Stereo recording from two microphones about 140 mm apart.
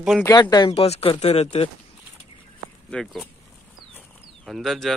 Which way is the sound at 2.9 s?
Centre (ahead or behind).